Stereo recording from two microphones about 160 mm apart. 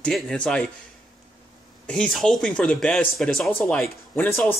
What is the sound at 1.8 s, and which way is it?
Speech, 5° left (ahead or behind).